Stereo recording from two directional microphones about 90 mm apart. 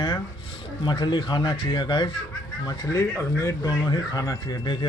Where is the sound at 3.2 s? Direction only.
35° left (ahead or behind).